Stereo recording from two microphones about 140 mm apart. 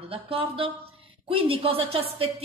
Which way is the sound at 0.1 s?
40° right (ahead or behind).